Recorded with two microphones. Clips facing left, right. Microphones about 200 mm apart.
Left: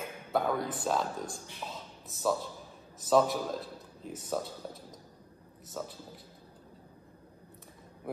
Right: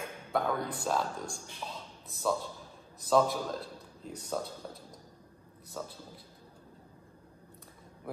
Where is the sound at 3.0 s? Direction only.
Centre (ahead or behind).